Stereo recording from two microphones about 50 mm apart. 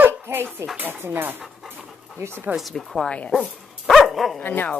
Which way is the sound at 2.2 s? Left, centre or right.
Right.